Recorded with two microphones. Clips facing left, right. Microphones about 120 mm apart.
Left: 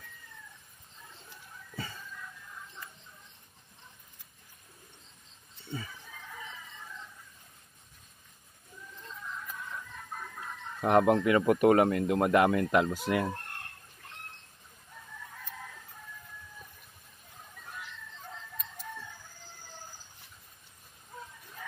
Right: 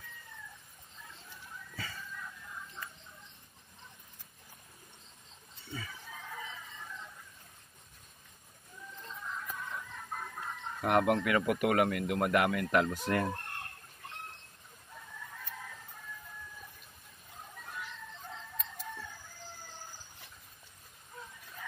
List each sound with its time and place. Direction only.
10.8 s a man's voice: 25° left (ahead or behind)
13.0 s speech: 10° left (ahead or behind)